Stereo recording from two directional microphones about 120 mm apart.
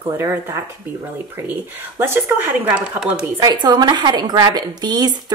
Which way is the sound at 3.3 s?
35° right (ahead or behind).